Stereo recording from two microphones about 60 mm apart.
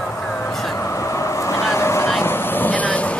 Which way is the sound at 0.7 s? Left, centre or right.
Left.